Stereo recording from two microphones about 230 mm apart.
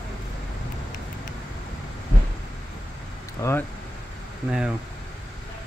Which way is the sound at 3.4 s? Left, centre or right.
Centre.